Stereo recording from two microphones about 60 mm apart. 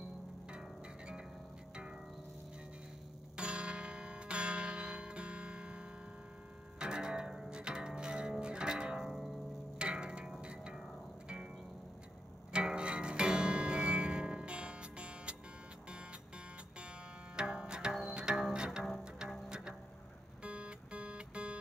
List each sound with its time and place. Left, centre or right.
0.5 s music: centre
3.3 s music: centre
9.8 s music: centre
12.5 s music: centre
17.4 s music: centre
20.4 s music: centre